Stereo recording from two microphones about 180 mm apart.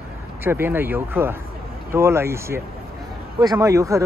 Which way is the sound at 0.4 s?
10° right (ahead or behind).